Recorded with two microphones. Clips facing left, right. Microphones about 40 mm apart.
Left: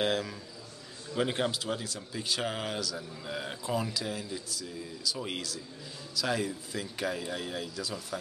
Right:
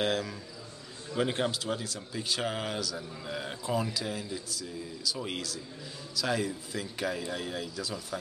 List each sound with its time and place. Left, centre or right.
0.0 s speech: centre